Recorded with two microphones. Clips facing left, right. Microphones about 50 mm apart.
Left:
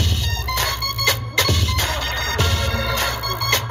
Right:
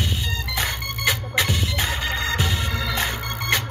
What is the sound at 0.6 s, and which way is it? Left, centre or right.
Music, centre.